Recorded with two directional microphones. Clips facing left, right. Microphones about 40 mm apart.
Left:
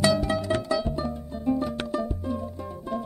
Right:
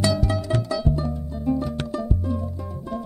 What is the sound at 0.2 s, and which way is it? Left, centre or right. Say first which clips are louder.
Music: right 1 dB; left.